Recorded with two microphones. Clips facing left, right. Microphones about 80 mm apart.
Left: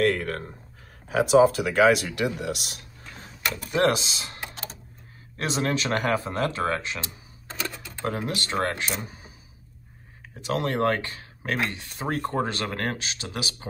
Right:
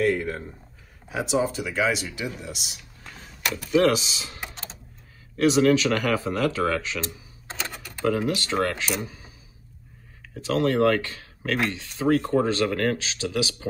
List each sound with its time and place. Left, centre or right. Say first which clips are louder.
0.1 s a sound: right 2 dB; left
1.3 s speech: left 7 dB; left
3.7 s speech: right 3 dB; left
5.4 s speech: right 8 dB; left
8.0 s speech: right 5 dB; left
10.3 s speech: right 4 dB; left